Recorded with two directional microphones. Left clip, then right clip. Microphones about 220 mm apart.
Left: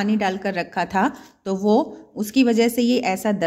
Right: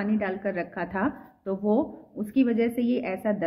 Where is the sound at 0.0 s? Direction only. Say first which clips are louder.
Left 6 dB; 60° left (ahead or behind).